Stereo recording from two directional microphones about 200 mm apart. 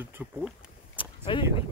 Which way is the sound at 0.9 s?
25° left (ahead or behind).